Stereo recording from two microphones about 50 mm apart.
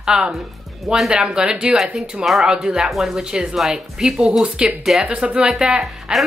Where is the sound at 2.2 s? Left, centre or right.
Centre; by 5.4 s right.